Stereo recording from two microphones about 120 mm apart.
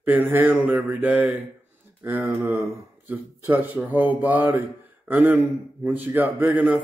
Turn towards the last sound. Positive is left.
turn(degrees=-10)  # may be behind; listen again after turning